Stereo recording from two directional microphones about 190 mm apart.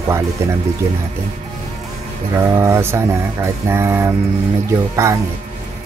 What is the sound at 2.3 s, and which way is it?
Speech, 15° right (ahead or behind).